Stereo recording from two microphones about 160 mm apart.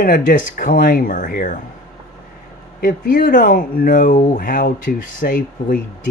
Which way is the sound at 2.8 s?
60° left (ahead or behind).